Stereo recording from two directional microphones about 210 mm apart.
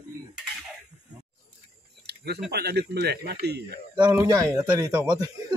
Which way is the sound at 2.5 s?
50° right (ahead or behind).